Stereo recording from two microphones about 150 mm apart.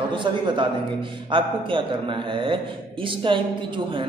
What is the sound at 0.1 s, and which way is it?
A man's voice, 35° right (ahead or behind).